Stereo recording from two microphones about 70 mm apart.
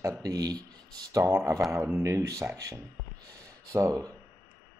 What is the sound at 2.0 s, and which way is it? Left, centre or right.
Speech, right.